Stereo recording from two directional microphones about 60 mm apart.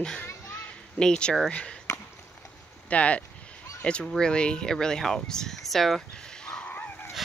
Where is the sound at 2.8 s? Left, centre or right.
Left; by 6.0 s centre.